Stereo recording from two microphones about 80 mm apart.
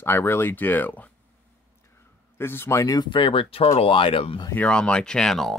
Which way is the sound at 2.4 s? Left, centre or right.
Left.